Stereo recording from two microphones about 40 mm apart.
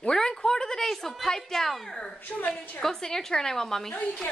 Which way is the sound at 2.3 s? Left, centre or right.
Left.